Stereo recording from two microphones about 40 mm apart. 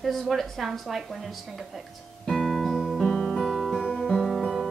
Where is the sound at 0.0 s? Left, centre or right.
Centre.